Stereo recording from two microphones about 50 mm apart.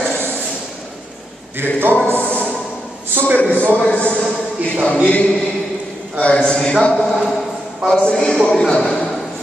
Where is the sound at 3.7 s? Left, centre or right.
Left.